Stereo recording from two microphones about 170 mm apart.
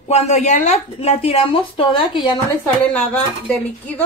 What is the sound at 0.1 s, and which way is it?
A woman's voice, 40° left (ahead or behind).